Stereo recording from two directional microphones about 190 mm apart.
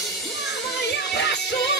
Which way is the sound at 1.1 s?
65° left (ahead or behind).